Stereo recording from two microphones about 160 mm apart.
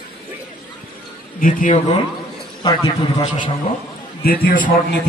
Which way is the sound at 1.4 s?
55° left (ahead or behind).